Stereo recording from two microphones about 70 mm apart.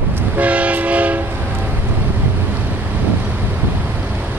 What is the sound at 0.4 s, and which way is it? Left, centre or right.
Train, centre.